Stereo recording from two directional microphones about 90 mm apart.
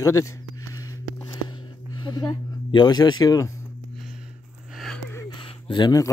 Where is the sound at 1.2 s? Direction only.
60° left (ahead or behind); by 3.5 s 40° left (ahead or behind).